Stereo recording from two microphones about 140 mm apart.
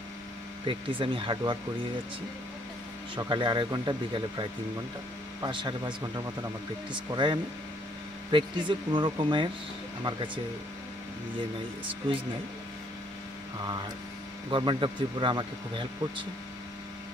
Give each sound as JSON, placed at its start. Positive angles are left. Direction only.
{"t": 0.7, "sound": "speech", "side_deg": -40}
{"t": 3.2, "sound": "speech", "side_deg": -35}
{"t": 14.5, "sound": "speech", "side_deg": -35}